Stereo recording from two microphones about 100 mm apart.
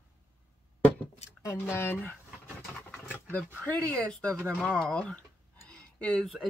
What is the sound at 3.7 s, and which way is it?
Speech, 10° left (ahead or behind).